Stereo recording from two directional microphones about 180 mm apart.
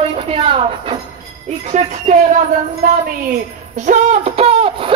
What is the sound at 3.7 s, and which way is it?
Music, 45° right (ahead or behind).